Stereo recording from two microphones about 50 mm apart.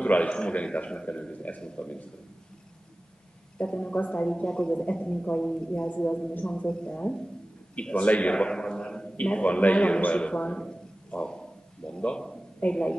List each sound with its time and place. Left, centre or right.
0.0 s a man's voice: left
3.5 s a man's voice: left
5.9 s speech: centre
7.7 s a man's voice: left
9.1 s a man's voice: left
12.6 s a man's voice: left